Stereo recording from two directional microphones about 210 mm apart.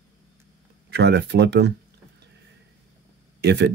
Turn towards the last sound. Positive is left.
turn(degrees=-55)  # may be behind; listen again after turning